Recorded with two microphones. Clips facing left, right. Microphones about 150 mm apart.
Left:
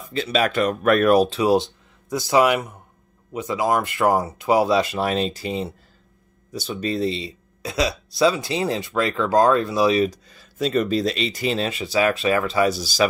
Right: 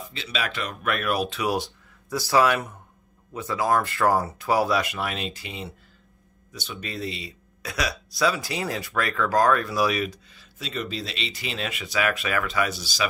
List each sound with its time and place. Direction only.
0.1 s speech: 45° left (ahead or behind); by 10.0 s 25° left (ahead or behind)
10.0 s speech: 40° left (ahead or behind)